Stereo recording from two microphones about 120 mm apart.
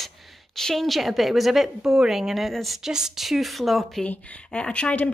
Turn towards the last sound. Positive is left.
turn(degrees=10)  # may be behind; listen again after turning